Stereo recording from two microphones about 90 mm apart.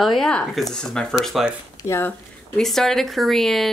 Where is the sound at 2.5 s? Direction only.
5° left (ahead or behind).